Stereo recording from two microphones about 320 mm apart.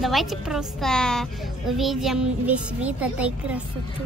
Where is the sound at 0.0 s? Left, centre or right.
Centre.